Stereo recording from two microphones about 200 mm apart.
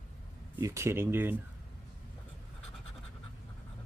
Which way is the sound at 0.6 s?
15° right (ahead or behind).